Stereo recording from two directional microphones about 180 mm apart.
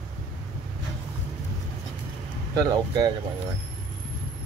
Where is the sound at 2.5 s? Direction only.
20° right (ahead or behind).